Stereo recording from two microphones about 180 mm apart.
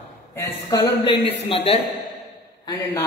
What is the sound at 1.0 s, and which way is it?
Speech, 30° left (ahead or behind).